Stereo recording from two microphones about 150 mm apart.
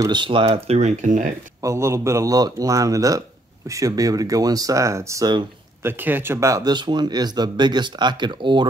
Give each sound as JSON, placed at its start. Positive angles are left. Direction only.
{"t": 0.0, "sound": "speech", "side_deg": -30}
{"t": 1.6, "sound": "speech", "side_deg": -20}